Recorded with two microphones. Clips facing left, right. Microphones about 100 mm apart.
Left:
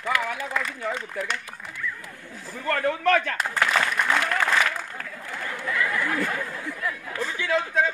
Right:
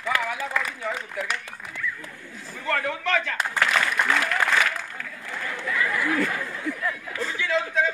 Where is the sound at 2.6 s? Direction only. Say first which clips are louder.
Left 4 dB; 45° left (ahead or behind).